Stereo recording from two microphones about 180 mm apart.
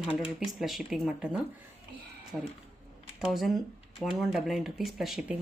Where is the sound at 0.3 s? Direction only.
Centre (ahead or behind).